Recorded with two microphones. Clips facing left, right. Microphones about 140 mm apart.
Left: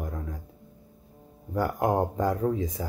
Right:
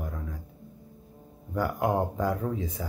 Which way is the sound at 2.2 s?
40° left (ahead or behind).